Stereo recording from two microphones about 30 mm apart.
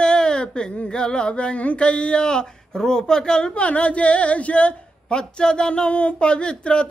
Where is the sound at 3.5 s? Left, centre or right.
Left.